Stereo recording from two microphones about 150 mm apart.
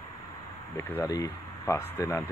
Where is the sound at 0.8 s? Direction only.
15° left (ahead or behind).